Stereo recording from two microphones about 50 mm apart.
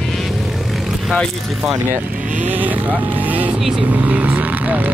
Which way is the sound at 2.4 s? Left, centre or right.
Right.